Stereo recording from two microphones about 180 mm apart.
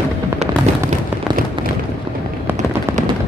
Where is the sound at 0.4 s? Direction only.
45° right (ahead or behind).